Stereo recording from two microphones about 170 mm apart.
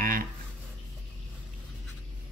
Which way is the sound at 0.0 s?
55° right (ahead or behind).